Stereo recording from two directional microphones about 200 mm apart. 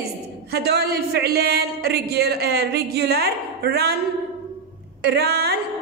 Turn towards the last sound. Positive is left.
turn(degrees=-55)  # may be behind; listen again after turning